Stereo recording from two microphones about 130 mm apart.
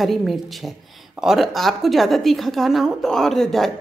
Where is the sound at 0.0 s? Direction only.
Centre (ahead or behind).